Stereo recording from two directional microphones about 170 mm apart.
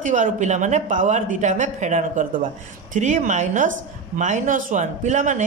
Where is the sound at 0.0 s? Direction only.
45° right (ahead or behind).